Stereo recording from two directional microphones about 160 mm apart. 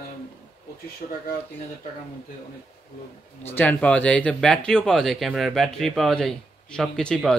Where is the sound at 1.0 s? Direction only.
50° left (ahead or behind).